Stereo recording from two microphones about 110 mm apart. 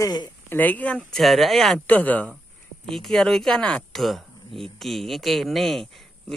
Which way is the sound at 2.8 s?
5° left (ahead or behind).